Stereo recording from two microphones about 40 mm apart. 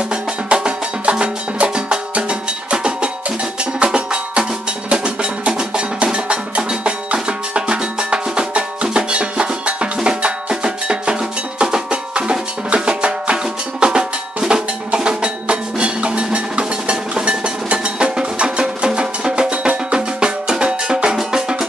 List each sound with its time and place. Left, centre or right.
0.1 s music: right
5.6 s cowbell: right
21.2 s music: centre